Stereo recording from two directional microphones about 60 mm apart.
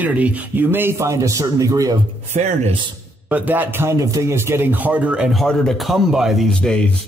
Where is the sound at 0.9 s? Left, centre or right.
Right.